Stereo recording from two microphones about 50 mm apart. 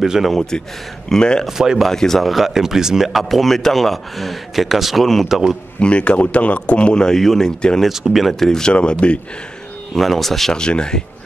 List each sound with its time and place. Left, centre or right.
0.0 s speech: centre
1.0 s speech: centre
1.6 s speech: centre
1.9 s speech: centre
5.8 s speech: left
7.9 s speech: centre
8.7 s speech: left
9.9 s speech: centre
10.6 s speech: centre